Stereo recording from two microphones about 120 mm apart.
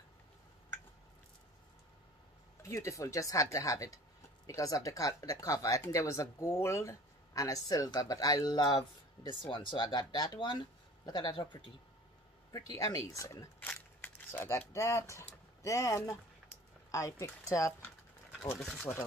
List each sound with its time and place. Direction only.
2.6 s speech: 25° left (ahead or behind); by 11.6 s 40° left (ahead or behind)
12.5 s speech: 30° left (ahead or behind)
13.6 s a sound: 15° left (ahead or behind)
14.7 s speech: 25° left (ahead or behind)
18.6 s speech: 5° left (ahead or behind)